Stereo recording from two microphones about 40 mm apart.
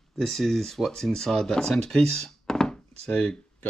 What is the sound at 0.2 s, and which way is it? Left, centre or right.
Speech, centre.